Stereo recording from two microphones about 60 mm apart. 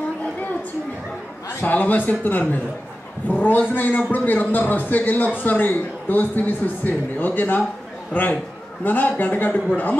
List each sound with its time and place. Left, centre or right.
1.6 s a man's voice: left